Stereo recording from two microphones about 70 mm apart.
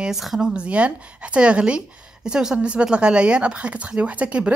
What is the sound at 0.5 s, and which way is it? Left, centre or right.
Speech, centre.